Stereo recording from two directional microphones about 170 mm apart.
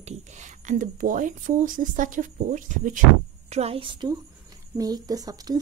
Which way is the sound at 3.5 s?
35° right (ahead or behind).